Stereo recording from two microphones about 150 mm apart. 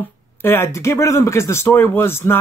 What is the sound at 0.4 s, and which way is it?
Speech, 15° left (ahead or behind).